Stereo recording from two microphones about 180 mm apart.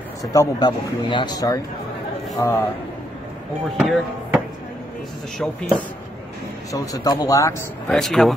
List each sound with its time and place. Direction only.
0.2 s a man's voice: 20° left (ahead or behind)
3.7 s speech: centre (ahead or behind)
5.4 s speech: 5° left (ahead or behind)
6.7 s speech: 20° left (ahead or behind)
7.9 s speech: centre (ahead or behind)